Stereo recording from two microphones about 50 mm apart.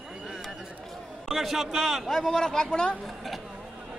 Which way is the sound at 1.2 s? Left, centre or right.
Centre.